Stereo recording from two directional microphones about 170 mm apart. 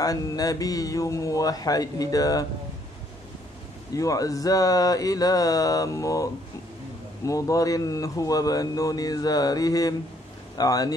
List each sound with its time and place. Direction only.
0.0 s speech: 20° left (ahead or behind)
3.9 s speech: 20° left (ahead or behind)